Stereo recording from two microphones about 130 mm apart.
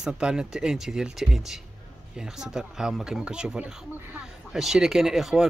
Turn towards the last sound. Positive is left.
turn(degrees=-5)  # may be behind; listen again after turning